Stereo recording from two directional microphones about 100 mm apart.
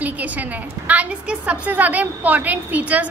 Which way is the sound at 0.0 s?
15° right (ahead or behind).